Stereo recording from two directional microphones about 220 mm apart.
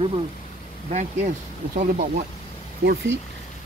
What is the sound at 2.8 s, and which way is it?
Speech, 55° right (ahead or behind).